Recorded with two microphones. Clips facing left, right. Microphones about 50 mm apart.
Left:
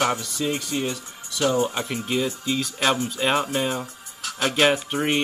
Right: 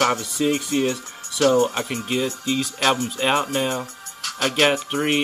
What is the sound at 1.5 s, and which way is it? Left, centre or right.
Speech, centre.